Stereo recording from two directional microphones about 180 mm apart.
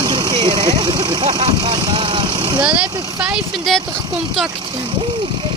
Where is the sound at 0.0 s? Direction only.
25° right (ahead or behind).